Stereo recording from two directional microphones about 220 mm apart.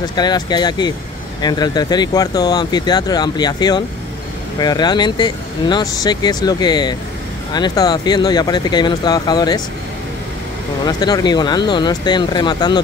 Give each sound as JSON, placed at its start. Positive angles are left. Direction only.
{"t": 0.1, "sound": "speech", "side_deg": 20}
{"t": 10.9, "sound": "speech", "side_deg": 20}